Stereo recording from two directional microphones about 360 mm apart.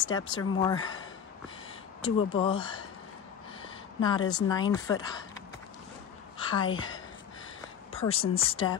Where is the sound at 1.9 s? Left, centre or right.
Centre.